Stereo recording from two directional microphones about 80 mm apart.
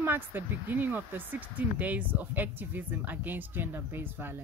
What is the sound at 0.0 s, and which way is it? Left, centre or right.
Speech, right.